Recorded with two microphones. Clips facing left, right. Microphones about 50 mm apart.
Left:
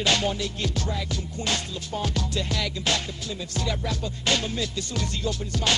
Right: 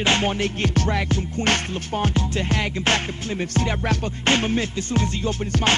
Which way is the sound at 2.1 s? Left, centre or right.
Right.